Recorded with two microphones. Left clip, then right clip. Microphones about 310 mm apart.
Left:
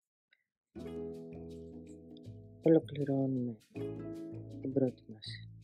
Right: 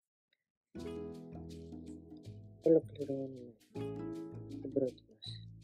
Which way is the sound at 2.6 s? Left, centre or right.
Left.